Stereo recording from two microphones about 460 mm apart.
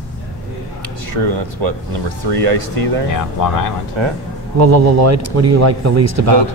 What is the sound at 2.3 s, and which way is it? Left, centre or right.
Speech, right.